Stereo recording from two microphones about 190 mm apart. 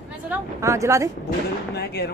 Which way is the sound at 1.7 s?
60° left (ahead or behind).